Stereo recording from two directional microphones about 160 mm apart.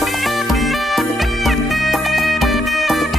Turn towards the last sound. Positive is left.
turn(degrees=0)  # may be behind; listen again after turning